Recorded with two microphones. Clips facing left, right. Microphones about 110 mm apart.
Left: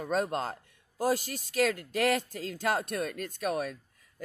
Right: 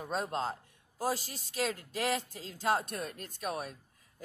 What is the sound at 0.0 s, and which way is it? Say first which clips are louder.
Speech: left 4 dB; 60° left (ahead or behind).